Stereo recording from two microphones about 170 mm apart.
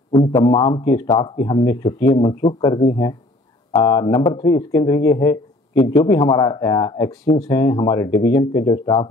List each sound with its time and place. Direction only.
0.3 s speech: 15° left (ahead or behind)